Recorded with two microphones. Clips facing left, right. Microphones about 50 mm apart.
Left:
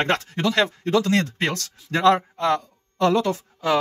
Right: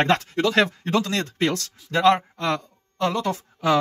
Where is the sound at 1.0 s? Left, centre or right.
Left.